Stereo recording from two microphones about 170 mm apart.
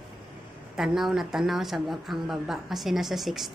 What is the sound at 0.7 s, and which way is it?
Speech, centre (ahead or behind).